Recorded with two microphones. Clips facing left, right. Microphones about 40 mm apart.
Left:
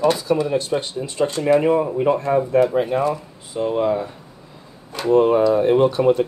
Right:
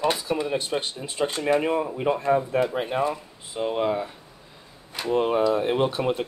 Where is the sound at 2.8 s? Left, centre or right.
Centre.